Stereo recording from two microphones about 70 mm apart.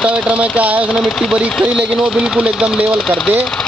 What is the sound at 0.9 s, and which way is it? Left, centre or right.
Speech, centre.